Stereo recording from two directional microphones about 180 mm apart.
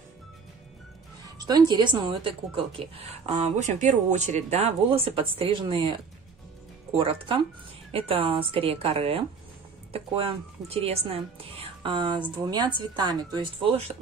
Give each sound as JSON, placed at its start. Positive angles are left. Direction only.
{"t": 1.4, "sound": "a woman's voice", "side_deg": -20}
{"t": 7.0, "sound": "a woman's voice", "side_deg": -30}